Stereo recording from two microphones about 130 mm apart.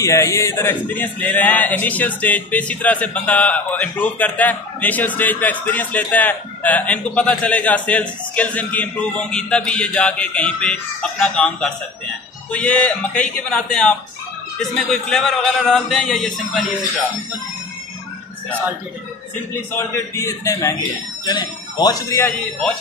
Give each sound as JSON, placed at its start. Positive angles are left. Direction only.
{"t": 0.0, "sound": "a man's voice", "side_deg": 25}
{"t": 19.7, "sound": "speech", "side_deg": 15}